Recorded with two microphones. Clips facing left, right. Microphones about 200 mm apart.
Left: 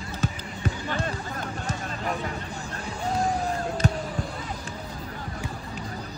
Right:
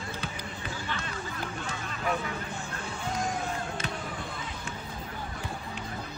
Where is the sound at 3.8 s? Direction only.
45° left (ahead or behind).